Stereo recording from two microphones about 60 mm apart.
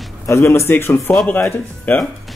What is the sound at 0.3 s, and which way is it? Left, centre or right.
Speech, left.